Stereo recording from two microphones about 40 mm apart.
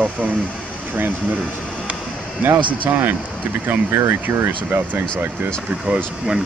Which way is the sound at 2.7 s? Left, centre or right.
Right.